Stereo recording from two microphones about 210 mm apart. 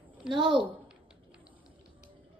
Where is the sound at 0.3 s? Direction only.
20° right (ahead or behind).